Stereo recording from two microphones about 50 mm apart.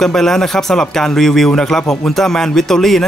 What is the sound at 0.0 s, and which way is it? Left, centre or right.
Speech, centre.